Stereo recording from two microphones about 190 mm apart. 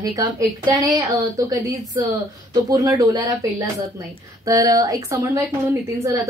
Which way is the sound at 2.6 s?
15° right (ahead or behind).